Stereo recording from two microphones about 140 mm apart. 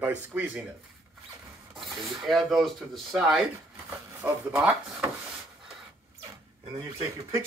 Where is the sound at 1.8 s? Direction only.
Centre (ahead or behind).